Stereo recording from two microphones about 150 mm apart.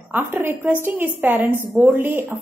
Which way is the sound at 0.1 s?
15° right (ahead or behind).